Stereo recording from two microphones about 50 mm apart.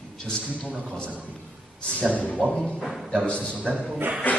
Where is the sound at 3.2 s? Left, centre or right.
Left.